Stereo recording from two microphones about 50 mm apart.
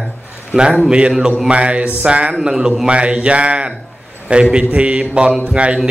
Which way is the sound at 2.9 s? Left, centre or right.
Right.